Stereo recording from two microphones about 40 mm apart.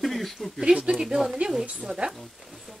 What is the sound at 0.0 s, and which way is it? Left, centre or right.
Speech, centre.